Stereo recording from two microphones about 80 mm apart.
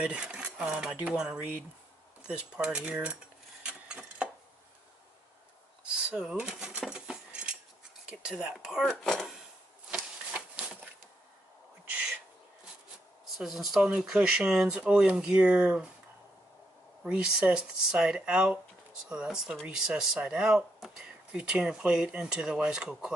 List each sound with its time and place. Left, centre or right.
0.0 s speech: centre
3.6 s a sound: centre
5.9 s keys jangling: centre
8.1 s speech: centre
9.0 s speech: centre
9.8 s a sound: centre
11.8 s owl: centre
13.4 s speech: centre
17.0 s speech: centre